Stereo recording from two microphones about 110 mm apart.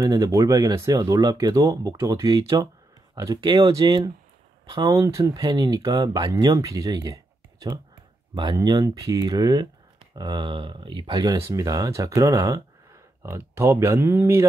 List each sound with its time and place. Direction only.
0.1 s speech: 30° right (ahead or behind)
8.5 s speech: 35° right (ahead or behind)
11.5 s speech: 35° right (ahead or behind)